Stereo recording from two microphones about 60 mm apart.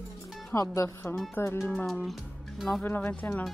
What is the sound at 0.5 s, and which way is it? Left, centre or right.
Speech, left.